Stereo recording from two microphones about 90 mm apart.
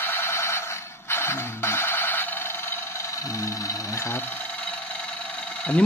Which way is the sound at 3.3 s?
35° left (ahead or behind).